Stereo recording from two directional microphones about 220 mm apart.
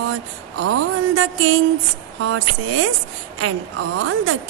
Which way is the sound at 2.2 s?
75° right (ahead or behind).